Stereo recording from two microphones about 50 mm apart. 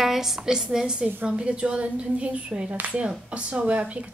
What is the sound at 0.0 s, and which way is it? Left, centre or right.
A woman's voice, centre.